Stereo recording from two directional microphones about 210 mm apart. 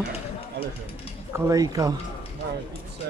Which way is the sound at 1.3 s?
15° right (ahead or behind).